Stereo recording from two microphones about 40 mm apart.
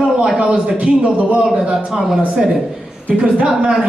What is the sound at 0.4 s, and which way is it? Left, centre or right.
Speech, right.